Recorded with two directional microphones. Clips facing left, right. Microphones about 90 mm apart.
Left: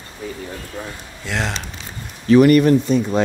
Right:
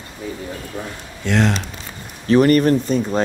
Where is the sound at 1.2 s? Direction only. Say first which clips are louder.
Right 6 dB; centre (ahead or behind).